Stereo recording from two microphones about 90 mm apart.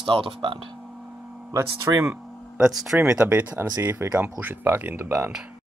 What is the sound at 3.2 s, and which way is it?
Speech, 20° right (ahead or behind).